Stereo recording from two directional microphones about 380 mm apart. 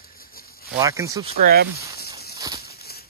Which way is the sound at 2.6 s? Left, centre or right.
Left.